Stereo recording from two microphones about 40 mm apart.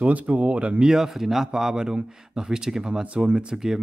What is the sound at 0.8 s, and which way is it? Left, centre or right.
Speech, centre.